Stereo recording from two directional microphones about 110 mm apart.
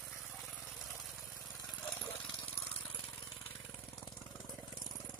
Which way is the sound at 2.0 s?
15° left (ahead or behind).